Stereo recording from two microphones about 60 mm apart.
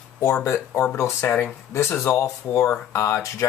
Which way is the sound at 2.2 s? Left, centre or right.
Left.